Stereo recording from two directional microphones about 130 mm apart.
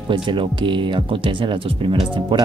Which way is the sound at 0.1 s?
40° right (ahead or behind).